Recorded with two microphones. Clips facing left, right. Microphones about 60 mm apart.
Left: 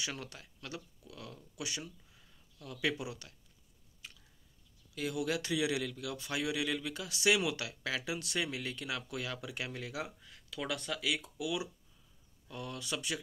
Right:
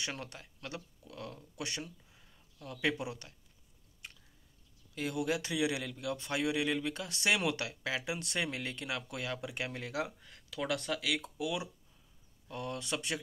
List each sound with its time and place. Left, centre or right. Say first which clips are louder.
0.0 s speech: right 1 dB; right
4.9 s a man's voice: right 1 dB; right
7.8 s a man's voice: left 1 dB; right
11.1 s a man's voice: left 1 dB; right